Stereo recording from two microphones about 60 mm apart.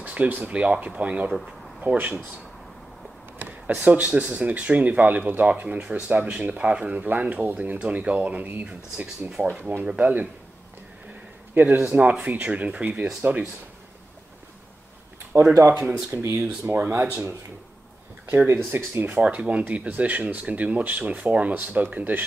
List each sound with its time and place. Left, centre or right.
0.0 s speech: right
1.8 s speech: right
3.3 s speech: right
5.8 s speech: right
8.6 s speech: centre
9.9 s speech: right
11.6 s speech: right
11.9 s speech: right
15.5 s speech: right
16.7 s speech: right
18.2 s speech: right
18.5 s speech: right
19.2 s speech: right